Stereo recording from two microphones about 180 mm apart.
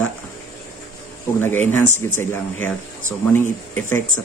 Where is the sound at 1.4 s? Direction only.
10° left (ahead or behind).